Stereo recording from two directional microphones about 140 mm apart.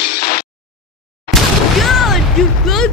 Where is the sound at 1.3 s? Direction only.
Centre (ahead or behind).